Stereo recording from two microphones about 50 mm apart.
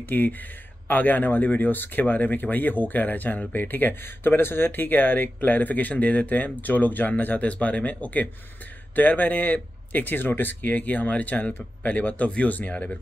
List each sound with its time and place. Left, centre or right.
0.1 s speech: left